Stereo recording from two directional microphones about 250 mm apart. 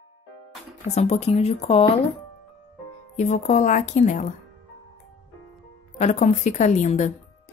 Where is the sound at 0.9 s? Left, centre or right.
Left.